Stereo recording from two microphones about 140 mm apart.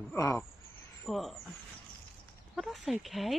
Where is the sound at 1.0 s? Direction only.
Centre (ahead or behind).